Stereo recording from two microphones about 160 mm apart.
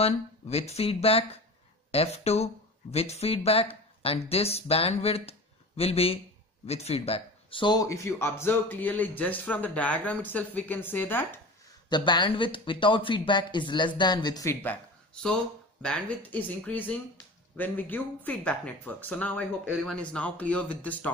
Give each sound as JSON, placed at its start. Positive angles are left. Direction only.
{"t": 0.0, "sound": "speech", "side_deg": 40}
{"t": 11.9, "sound": "speech", "side_deg": 30}
{"t": 15.8, "sound": "speech", "side_deg": 10}